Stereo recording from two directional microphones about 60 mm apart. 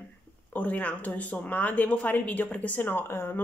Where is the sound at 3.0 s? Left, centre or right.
Left.